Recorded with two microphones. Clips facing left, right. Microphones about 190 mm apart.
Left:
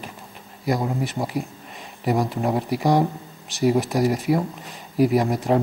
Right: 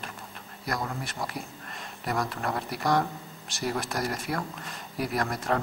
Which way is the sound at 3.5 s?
5° left (ahead or behind).